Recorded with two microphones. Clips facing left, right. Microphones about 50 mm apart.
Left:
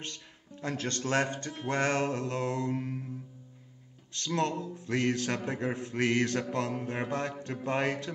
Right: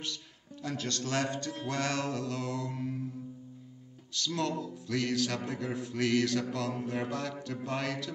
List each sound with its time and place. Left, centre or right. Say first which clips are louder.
0.0 s speech: right 2 dB; left
4.1 s speech: left 2 dB; left